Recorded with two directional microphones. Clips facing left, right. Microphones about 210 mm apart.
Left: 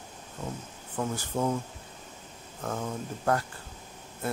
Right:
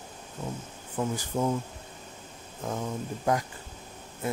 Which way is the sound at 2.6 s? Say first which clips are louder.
Right 1 dB; 10° right (ahead or behind).